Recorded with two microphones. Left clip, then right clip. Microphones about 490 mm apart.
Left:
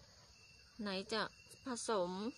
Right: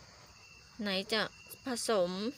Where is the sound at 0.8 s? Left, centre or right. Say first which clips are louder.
Right 7 dB; left.